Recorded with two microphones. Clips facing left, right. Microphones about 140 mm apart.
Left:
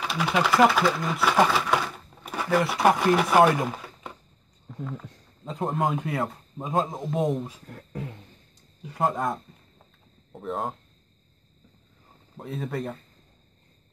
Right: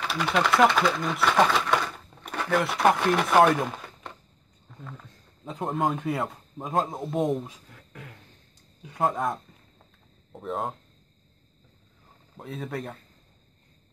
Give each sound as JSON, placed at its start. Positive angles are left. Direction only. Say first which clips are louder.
{"t": 0.1, "sound": "speech", "louder": "even", "side_deg": 5}
{"t": 5.4, "sound": "a man's voice", "louder": "left 1 dB", "side_deg": 0}
{"t": 7.9, "sound": "a sound", "louder": "left 9 dB", "side_deg": 30}
{"t": 8.8, "sound": "a sound", "louder": "even", "side_deg": 0}
{"t": 10.3, "sound": "speech", "louder": "even", "side_deg": 0}
{"t": 12.4, "sound": "a man's voice", "louder": "left 2 dB", "side_deg": 0}